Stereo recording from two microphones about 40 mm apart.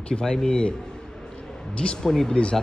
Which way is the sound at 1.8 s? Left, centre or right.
Left.